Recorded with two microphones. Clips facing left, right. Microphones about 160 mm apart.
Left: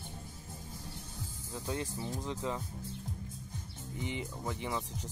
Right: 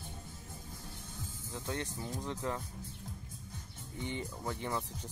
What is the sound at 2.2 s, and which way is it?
Speech, centre (ahead or behind).